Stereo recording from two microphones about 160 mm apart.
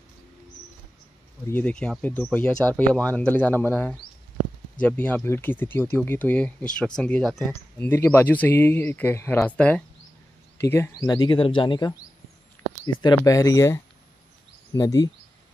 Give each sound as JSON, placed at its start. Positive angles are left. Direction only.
{"t": 1.5, "sound": "speech", "side_deg": 5}